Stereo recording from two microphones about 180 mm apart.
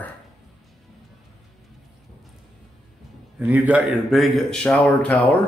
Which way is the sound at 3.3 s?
10° right (ahead or behind).